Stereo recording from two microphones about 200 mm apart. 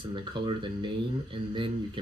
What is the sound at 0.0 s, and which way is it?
Speech, 25° right (ahead or behind).